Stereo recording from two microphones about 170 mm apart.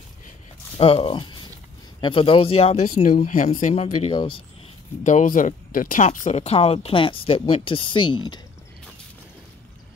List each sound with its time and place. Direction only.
0.7 s speech: 35° left (ahead or behind)
3.3 s speech: 50° left (ahead or behind)
3.8 s speech: 30° left (ahead or behind)
5.0 s speech: 50° left (ahead or behind); by 8.4 s 25° left (ahead or behind)